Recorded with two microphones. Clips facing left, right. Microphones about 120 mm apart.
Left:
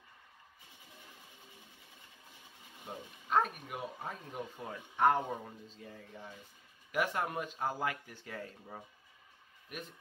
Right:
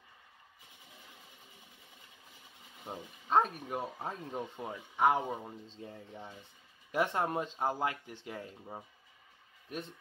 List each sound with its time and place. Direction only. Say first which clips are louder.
2.9 s speech: right 2 dB; 30° right (ahead or behind)
4.9 s speech: even; 10° right (ahead or behind)
5.8 s speech: right 3 dB; 25° right (ahead or behind)